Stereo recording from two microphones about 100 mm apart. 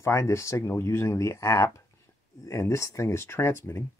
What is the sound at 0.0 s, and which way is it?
Speech, 30° left (ahead or behind).